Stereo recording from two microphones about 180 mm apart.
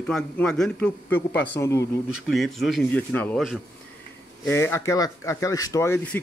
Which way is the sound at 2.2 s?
Centre (ahead or behind).